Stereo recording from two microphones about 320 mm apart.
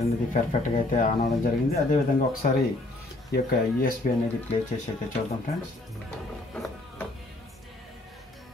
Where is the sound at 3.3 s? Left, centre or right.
Left.